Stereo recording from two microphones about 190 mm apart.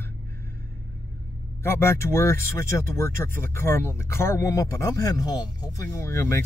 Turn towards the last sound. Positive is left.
turn(degrees=15)  # may be behind; listen again after turning